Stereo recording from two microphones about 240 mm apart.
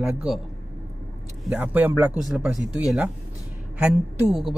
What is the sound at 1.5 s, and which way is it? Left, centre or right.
Speech, centre.